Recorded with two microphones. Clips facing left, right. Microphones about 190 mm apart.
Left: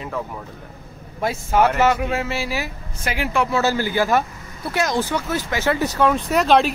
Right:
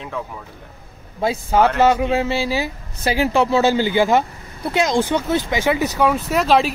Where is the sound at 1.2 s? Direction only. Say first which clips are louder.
Right 2 dB; 30° right (ahead or behind).